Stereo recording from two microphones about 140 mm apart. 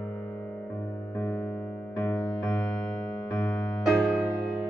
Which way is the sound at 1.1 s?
10° left (ahead or behind).